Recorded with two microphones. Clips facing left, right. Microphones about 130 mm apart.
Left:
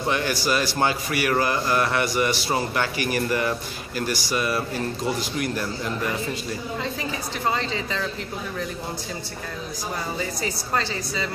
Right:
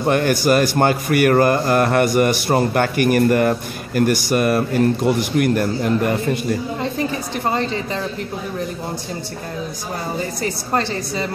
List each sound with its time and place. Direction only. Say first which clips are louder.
0.0 s speech: right 8 dB; 50° right (ahead or behind)
10.4 s speech: right 6 dB; 55° right (ahead or behind)